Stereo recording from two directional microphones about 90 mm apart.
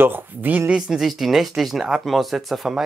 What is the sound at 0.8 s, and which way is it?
Speech, 5° right (ahead or behind).